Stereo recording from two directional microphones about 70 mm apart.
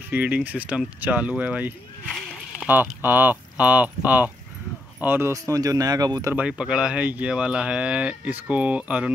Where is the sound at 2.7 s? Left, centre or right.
Right.